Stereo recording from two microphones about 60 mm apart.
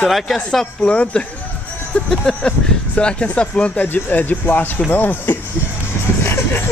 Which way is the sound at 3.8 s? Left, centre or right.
Left.